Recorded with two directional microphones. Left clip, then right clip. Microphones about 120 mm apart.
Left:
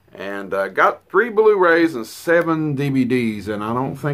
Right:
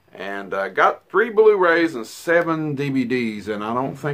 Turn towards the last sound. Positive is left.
turn(degrees=25)  # may be behind; listen again after turning